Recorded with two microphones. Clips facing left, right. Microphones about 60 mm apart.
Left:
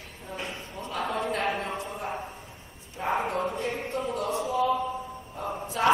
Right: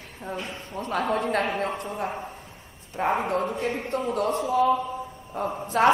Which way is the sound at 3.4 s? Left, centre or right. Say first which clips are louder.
Right 2 dB; right.